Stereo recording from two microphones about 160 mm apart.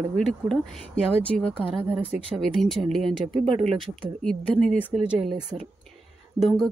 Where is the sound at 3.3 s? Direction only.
30° right (ahead or behind).